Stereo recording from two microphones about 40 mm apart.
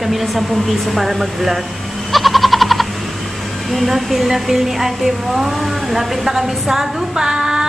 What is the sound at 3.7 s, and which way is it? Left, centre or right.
A woman's voice, centre.